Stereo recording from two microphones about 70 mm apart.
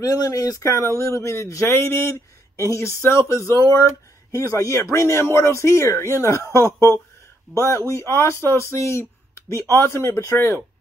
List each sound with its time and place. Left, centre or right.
0.0 s speech: left